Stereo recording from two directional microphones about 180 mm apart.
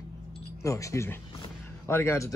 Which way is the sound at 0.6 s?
15° left (ahead or behind).